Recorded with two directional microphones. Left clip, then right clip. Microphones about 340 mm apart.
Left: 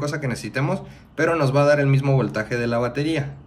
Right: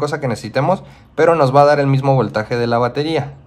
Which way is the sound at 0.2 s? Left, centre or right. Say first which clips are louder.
Right 8 dB; centre.